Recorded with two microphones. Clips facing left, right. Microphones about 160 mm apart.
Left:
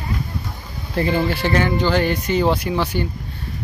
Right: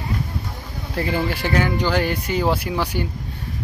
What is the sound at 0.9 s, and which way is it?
Speech, 5° right (ahead or behind).